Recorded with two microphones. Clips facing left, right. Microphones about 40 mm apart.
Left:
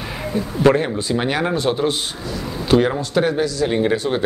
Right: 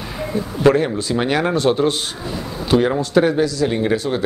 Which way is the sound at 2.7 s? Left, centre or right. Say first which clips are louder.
Right 1 dB; centre.